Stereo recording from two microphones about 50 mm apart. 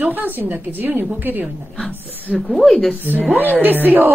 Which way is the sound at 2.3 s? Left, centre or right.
Centre.